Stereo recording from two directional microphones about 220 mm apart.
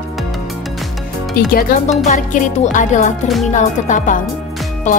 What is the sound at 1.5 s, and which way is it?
Speech, 35° left (ahead or behind).